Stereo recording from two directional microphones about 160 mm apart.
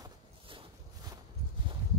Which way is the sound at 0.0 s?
35° right (ahead or behind).